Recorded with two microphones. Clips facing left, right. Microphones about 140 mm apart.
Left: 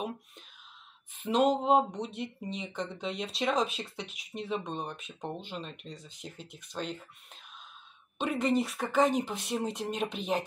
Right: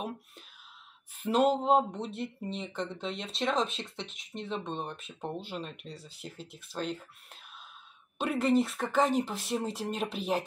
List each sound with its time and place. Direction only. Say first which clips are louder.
1.2 s speech: even; 5° right (ahead or behind)
8.2 s speech: right 2 dB; 5° right (ahead or behind)